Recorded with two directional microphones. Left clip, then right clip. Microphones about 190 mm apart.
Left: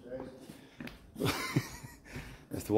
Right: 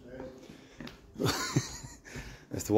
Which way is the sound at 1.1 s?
20° right (ahead or behind).